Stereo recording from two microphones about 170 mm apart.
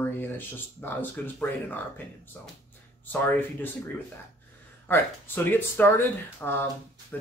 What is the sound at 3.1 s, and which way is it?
Speech, 10° left (ahead or behind).